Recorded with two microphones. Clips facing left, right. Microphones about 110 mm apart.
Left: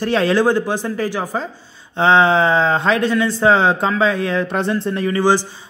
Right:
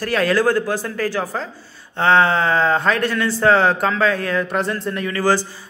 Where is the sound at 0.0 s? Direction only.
25° left (ahead or behind).